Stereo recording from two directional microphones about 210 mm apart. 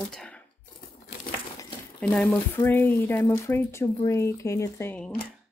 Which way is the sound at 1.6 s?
5° left (ahead or behind).